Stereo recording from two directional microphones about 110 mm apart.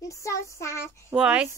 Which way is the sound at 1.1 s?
10° right (ahead or behind).